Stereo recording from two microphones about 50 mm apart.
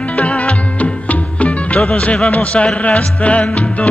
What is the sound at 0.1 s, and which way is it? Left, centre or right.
Music, left.